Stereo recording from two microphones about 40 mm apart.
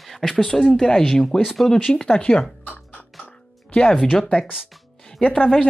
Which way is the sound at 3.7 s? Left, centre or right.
Left.